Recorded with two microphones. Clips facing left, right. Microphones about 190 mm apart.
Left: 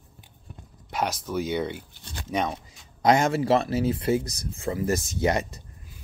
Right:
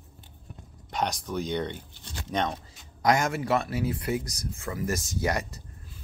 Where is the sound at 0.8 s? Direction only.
5° left (ahead or behind).